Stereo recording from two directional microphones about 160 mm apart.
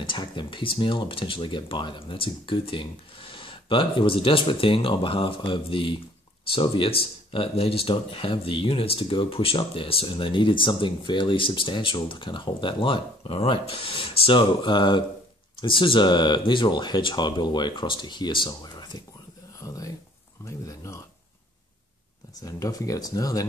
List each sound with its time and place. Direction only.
0.0 s speech: 30° left (ahead or behind)
22.4 s speech: 20° left (ahead or behind)